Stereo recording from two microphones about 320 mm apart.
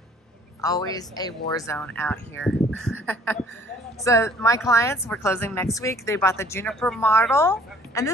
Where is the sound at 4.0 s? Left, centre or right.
Centre.